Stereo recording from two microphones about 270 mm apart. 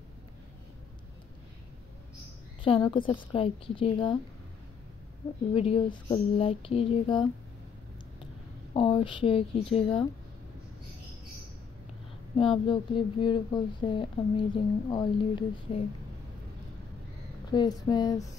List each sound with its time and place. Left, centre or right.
2.6 s speech: centre
5.5 s speech: left
8.7 s speech: centre
12.4 s speech: centre
17.5 s speech: centre